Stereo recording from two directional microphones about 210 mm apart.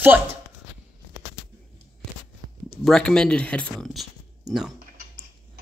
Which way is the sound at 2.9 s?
5° left (ahead or behind).